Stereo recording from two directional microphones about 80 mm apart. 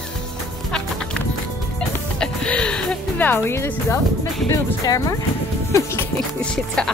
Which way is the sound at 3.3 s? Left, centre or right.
Left.